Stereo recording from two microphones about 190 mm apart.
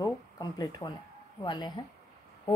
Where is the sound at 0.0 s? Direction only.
20° left (ahead or behind).